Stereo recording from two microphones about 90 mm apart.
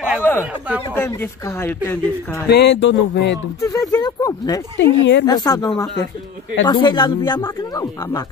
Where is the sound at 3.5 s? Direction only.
35° left (ahead or behind).